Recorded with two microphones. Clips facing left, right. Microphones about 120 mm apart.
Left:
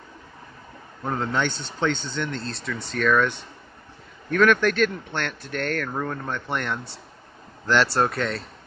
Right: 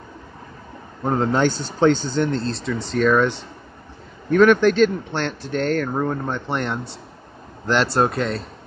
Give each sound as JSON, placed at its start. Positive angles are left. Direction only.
{"t": 1.0, "sound": "speech", "side_deg": -35}